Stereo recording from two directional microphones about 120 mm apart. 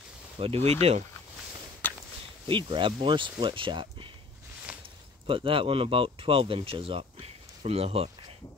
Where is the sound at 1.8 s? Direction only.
15° left (ahead or behind).